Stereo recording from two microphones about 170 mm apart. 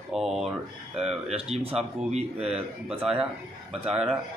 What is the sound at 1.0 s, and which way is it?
Speech, 5° right (ahead or behind).